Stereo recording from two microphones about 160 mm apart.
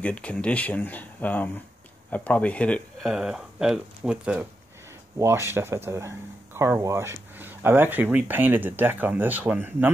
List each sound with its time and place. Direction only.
0.0 s speech: 10° left (ahead or behind)
3.1 s speech: 5° right (ahead or behind)